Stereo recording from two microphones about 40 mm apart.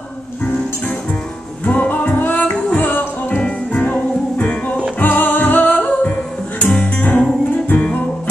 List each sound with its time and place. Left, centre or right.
1.6 s music: left
2.1 s music: left
3.3 s music: left
3.8 s music: left